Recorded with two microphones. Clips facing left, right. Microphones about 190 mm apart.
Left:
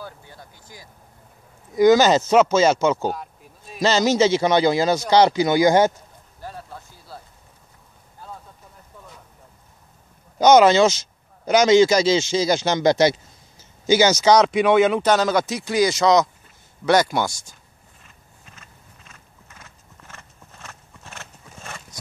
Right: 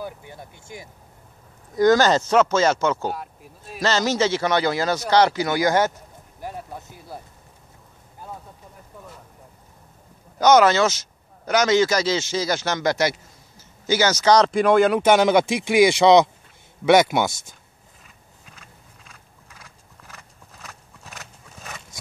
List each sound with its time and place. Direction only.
0.0 s speech: 20° right (ahead or behind)
1.8 s a man's voice: 20° left (ahead or behind)
3.1 s speech: 5° right (ahead or behind)
3.8 s a man's voice: 10° left (ahead or behind)
6.4 s a sound: 20° right (ahead or behind)
10.4 s a man's voice: 15° left (ahead or behind)
15.2 s speech: 25° right (ahead or behind)
18.0 s horse: centre (ahead or behind)